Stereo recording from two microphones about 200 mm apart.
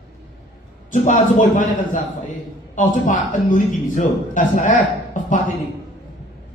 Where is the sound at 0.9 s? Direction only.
40° left (ahead or behind).